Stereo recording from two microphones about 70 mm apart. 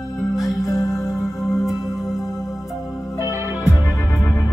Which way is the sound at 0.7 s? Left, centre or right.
Left.